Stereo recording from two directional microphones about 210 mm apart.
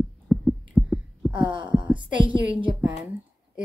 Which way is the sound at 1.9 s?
25° right (ahead or behind).